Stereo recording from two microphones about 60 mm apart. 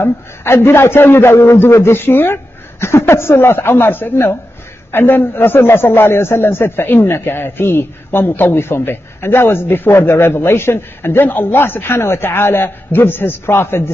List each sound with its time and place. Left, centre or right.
0.0 s a man's voice: left